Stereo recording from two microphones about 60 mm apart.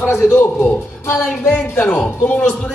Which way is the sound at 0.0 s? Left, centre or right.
Left.